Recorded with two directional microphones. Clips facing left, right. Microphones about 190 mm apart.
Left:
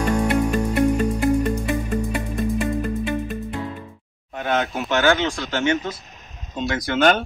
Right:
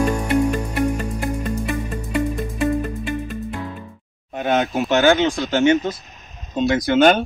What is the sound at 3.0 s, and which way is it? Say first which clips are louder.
Music: left 1 dB; centre (ahead or behind).